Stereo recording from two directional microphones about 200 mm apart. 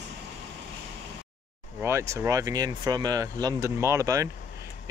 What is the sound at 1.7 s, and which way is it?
Speech, 15° right (ahead or behind).